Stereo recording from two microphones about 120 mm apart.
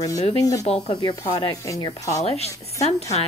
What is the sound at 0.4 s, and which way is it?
A woman's voice, 30° left (ahead or behind).